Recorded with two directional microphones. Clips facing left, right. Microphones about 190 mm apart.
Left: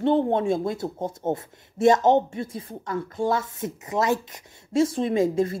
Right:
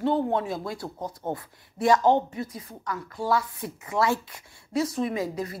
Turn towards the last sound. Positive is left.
turn(degrees=25)  # may be behind; listen again after turning